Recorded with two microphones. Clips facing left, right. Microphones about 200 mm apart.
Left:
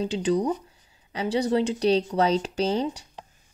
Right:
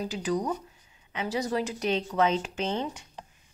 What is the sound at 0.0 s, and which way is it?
Speech, 30° left (ahead or behind).